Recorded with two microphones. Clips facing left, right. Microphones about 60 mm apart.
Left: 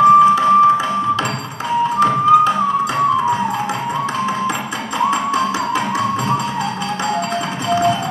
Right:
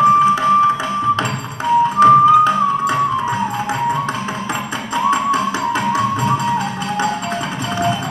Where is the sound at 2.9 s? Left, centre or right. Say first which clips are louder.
Left 2 dB; left.